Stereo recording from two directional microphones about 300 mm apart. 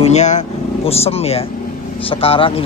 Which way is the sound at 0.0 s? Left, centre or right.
Left.